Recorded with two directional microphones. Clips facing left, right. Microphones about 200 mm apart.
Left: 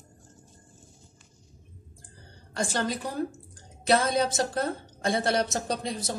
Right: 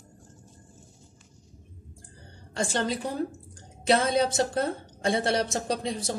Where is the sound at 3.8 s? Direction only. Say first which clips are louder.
Right 1 dB; 30° right (ahead or behind).